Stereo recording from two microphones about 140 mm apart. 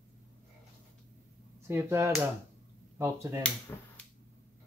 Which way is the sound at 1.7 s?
20° right (ahead or behind).